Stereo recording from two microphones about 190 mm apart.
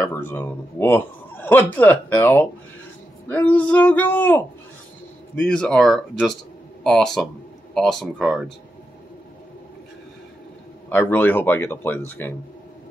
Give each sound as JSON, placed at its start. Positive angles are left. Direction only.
{"t": 0.0, "sound": "a man's voice", "side_deg": 10}
{"t": 10.9, "sound": "a man's voice", "side_deg": 10}